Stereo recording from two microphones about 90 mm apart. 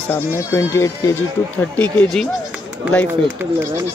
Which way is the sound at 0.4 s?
35° left (ahead or behind).